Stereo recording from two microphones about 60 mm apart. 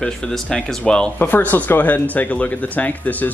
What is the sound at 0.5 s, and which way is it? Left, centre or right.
Speech, centre.